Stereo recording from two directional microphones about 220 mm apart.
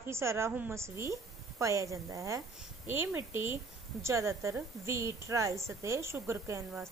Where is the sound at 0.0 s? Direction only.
10° right (ahead or behind).